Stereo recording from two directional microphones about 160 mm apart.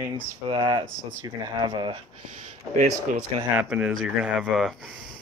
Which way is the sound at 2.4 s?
60° right (ahead or behind).